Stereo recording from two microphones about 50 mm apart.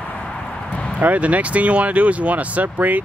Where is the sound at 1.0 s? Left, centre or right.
Right.